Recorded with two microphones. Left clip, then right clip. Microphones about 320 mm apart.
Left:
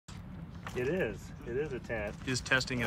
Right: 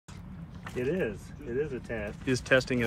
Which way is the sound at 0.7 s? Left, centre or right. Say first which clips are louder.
Right 2 dB; left.